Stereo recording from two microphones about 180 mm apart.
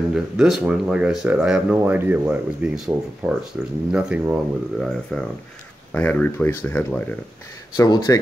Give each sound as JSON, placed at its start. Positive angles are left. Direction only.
{"t": 0.1, "sound": "speech", "side_deg": 0}
{"t": 5.9, "sound": "speech", "side_deg": 10}